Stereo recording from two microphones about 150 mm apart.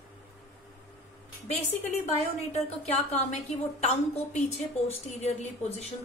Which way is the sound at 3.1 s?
50° left (ahead or behind).